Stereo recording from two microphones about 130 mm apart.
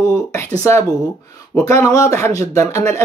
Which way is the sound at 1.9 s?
25° left (ahead or behind).